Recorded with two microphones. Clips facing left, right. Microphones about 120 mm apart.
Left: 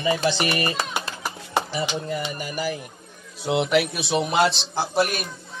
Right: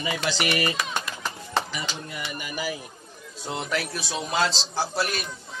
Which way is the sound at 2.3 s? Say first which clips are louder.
Left 4 dB; 40° left (ahead or behind).